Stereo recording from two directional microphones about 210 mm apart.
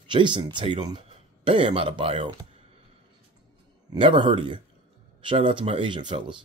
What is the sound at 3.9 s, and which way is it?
Speech, 25° right (ahead or behind).